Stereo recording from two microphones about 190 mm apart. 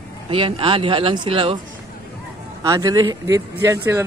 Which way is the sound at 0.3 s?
30° right (ahead or behind).